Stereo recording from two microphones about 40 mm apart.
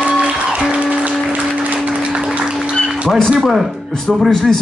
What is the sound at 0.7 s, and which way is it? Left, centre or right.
Music, right.